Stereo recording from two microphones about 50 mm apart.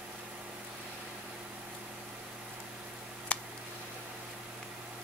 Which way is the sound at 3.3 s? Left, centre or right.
Left.